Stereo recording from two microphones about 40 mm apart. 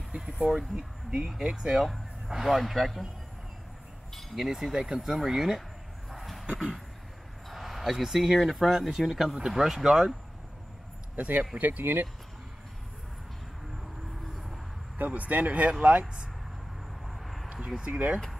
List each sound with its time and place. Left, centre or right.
0.6 s speech: right
1.8 s speech: centre
4.4 s speech: centre
6.0 s a sound: centre
6.4 s a sound: centre
7.4 s speech: centre
11.1 s speech: right
14.2 s vehicle: centre
15.0 s speech: right
17.0 s vehicle: centre
17.7 s speech: right